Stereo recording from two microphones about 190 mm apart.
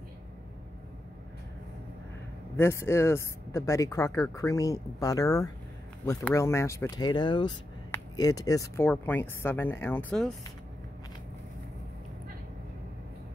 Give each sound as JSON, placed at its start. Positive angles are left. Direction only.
{"t": 2.5, "sound": "speech", "side_deg": 15}